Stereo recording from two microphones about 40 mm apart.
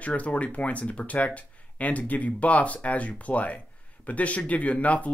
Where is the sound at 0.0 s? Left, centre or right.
Left.